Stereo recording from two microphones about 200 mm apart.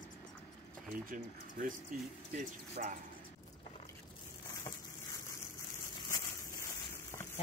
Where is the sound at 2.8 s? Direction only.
45° right (ahead or behind).